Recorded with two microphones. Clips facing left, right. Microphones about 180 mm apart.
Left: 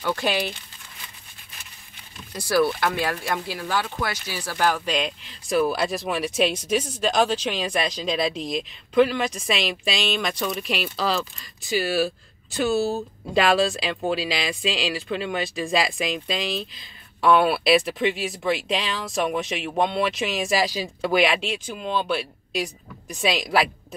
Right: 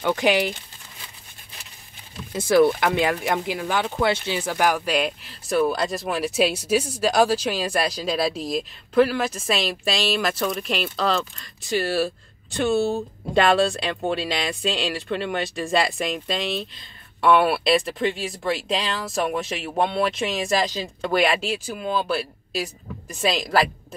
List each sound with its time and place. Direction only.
0.0 s speech: 15° right (ahead or behind)
2.3 s speech: 20° right (ahead or behind); by 23.7 s centre (ahead or behind)